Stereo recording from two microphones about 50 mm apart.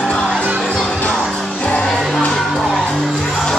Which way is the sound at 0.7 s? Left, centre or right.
Centre.